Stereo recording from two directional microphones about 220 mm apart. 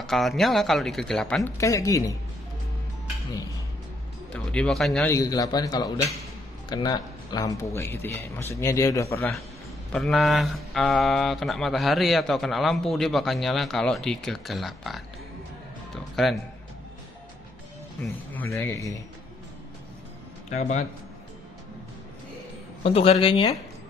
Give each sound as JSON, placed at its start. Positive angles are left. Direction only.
{"t": 0.0, "sound": "speech", "side_deg": 0}
{"t": 4.3, "sound": "speech", "side_deg": 5}
{"t": 9.9, "sound": "speech", "side_deg": 0}
{"t": 15.9, "sound": "music", "side_deg": 0}
{"t": 18.3, "sound": "speech", "side_deg": 10}
{"t": 20.4, "sound": "speech", "side_deg": 30}
{"t": 22.8, "sound": "a man's voice", "side_deg": 30}